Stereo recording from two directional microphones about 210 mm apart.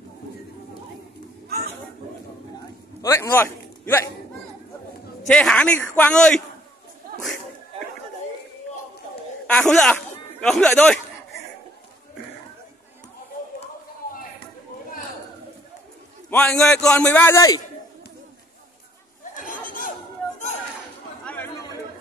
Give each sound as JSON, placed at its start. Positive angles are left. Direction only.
{"t": 3.0, "sound": "a man's voice", "side_deg": 15}
{"t": 5.2, "sound": "a man's voice", "side_deg": 5}
{"t": 9.5, "sound": "speech", "side_deg": 5}
{"t": 16.3, "sound": "a man's voice", "side_deg": 5}
{"t": 19.3, "sound": "a sound", "side_deg": 40}
{"t": 21.3, "sound": "chatter", "side_deg": 10}